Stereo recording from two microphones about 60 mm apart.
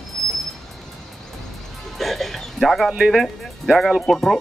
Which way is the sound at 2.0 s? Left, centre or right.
Centre.